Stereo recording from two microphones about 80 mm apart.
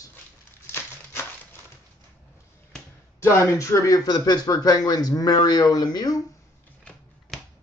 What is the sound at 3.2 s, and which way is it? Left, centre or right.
Speech, left.